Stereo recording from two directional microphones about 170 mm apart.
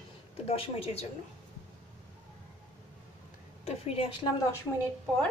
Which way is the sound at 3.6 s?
35° left (ahead or behind).